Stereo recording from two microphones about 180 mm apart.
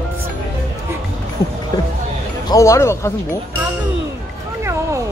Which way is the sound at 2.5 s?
15° left (ahead or behind).